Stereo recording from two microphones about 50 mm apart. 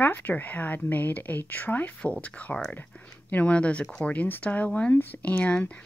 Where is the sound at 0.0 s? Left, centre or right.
Left.